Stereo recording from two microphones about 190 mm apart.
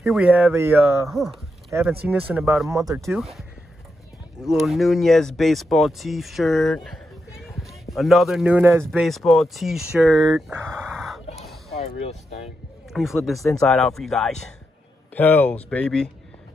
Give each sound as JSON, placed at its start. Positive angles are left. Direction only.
{"t": 0.0, "sound": "speech", "side_deg": -5}
{"t": 2.7, "sound": "speech", "side_deg": -15}
{"t": 3.2, "sound": "speech", "side_deg": 0}
{"t": 9.0, "sound": "speech", "side_deg": 0}
{"t": 11.7, "sound": "speech", "side_deg": 35}
{"t": 12.9, "sound": "speech", "side_deg": 0}